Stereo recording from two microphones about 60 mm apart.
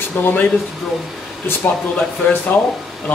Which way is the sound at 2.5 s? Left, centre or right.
Left.